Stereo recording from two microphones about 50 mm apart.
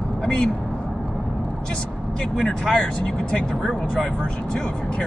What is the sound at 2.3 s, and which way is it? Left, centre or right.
Speech, centre.